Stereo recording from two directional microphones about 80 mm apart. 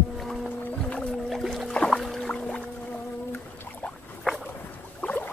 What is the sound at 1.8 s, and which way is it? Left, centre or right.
Rowboat, centre.